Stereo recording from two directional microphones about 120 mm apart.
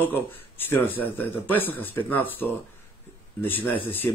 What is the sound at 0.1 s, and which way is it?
Speech, 15° left (ahead or behind).